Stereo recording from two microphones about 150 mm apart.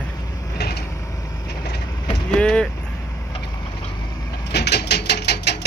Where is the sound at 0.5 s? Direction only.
90° left.